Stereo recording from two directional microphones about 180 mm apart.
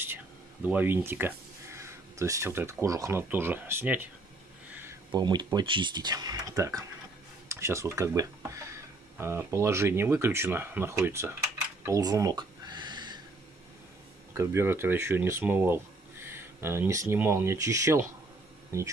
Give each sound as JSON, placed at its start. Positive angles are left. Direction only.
{"t": 0.7, "sound": "speech", "side_deg": -10}
{"t": 5.1, "sound": "speech", "side_deg": -25}
{"t": 11.8, "sound": "a sound", "side_deg": -20}
{"t": 14.3, "sound": "speech", "side_deg": -15}